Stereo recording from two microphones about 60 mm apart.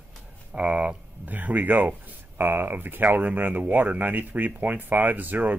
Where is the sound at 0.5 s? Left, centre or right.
Right.